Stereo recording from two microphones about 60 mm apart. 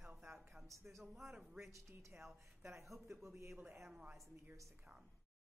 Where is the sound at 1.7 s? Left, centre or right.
Right.